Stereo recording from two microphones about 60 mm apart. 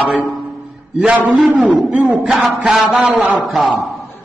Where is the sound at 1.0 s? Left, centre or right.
Right.